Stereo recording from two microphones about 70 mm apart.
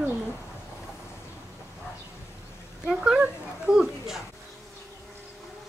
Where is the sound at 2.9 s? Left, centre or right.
Centre.